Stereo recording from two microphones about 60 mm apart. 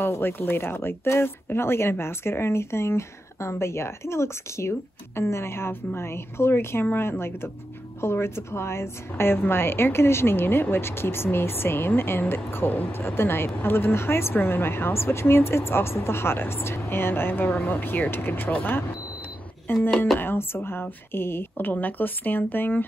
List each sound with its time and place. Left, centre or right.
0.0 s speech: left